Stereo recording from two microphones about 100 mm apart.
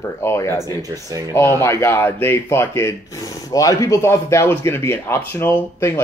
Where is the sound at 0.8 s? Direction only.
35° right (ahead or behind).